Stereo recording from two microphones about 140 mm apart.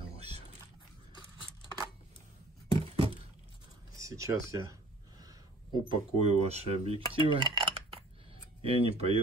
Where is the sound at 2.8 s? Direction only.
45° right (ahead or behind).